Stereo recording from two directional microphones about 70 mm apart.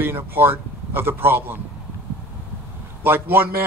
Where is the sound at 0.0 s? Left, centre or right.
Right.